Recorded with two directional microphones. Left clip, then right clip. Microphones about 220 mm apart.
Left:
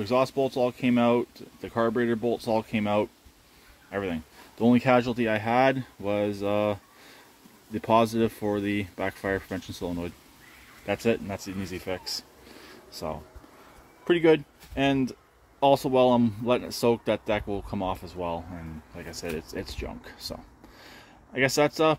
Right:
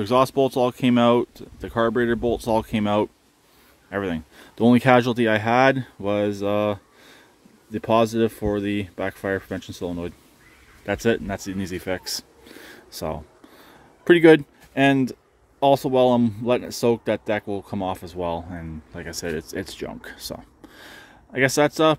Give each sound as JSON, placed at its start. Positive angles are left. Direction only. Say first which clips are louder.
{"t": 0.0, "sound": "speech", "louder": "right 6 dB", "side_deg": -35}
{"t": 10.9, "sound": "speech", "louder": "right 4 dB", "side_deg": -35}